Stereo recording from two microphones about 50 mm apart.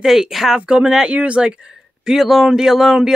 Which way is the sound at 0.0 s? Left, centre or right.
Centre.